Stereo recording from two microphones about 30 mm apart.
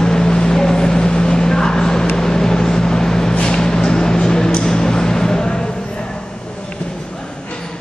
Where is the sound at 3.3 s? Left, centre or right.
Left.